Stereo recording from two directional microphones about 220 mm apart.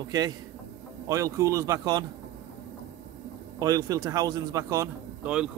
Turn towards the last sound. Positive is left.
turn(degrees=-5)  # may be behind; listen again after turning